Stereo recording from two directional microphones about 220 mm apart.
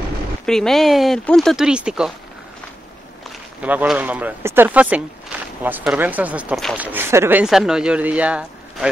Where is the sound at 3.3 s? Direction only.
5° right (ahead or behind).